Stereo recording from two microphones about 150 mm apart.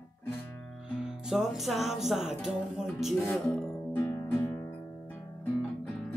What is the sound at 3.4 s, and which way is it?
Music, 20° left (ahead or behind).